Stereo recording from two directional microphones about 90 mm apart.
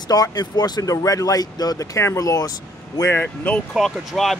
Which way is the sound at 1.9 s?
35° left (ahead or behind).